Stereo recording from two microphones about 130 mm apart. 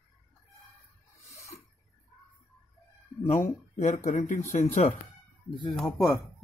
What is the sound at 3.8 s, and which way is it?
Speech, 65° left (ahead or behind).